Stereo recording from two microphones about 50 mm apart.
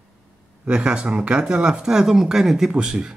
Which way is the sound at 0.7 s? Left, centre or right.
Centre.